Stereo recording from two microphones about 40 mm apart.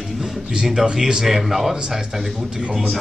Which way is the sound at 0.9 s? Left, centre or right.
Centre.